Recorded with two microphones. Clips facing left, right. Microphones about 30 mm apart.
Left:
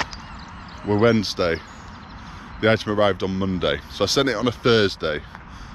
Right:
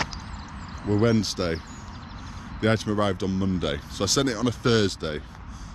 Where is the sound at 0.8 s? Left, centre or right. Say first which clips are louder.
Left 4 dB; left.